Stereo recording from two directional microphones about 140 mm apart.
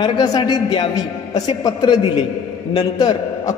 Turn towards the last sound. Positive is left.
turn(degrees=30)  # may be behind; listen again after turning